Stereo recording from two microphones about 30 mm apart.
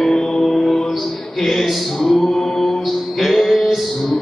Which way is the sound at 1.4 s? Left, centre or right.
Centre.